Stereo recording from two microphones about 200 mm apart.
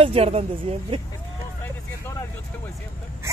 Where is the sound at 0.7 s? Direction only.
30° right (ahead or behind).